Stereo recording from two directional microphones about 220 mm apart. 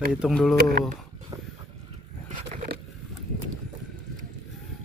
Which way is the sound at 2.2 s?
30° right (ahead or behind).